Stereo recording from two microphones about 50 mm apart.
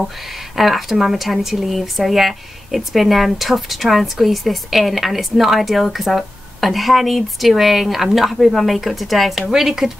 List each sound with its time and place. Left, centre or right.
0.6 s speech: centre